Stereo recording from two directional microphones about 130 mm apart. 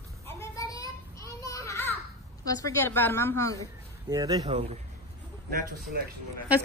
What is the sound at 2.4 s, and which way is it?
A woman's voice, 25° left (ahead or behind).